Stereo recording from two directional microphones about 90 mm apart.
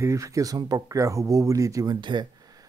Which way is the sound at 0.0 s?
35° right (ahead or behind).